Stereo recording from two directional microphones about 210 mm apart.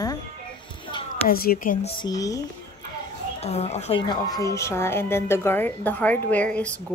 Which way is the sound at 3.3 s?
30° left (ahead or behind).